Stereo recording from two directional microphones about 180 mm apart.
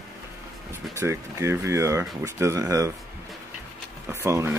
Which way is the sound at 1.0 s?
15° right (ahead or behind).